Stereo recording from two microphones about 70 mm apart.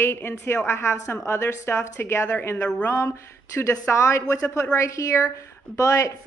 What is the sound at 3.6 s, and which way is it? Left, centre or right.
Speech, left.